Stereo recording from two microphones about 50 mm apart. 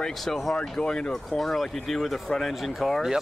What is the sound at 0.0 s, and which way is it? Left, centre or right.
Speech, centre.